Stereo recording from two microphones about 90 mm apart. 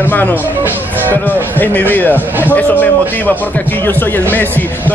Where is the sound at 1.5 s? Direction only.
20° left (ahead or behind).